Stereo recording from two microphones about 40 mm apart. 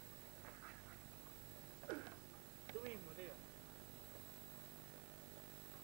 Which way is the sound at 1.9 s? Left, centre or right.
Right.